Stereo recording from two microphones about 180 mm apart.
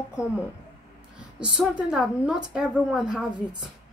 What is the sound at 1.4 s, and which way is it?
A woman's voice, 5° right (ahead or behind).